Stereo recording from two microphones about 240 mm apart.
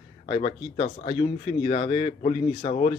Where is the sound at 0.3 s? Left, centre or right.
Left.